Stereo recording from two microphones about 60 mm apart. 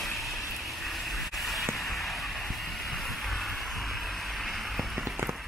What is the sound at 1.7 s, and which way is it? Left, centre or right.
Vehicle, centre.